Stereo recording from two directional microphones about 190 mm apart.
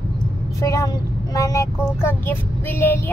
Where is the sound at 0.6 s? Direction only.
15° left (ahead or behind).